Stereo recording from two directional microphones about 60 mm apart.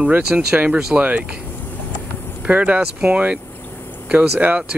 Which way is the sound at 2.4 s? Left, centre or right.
Right.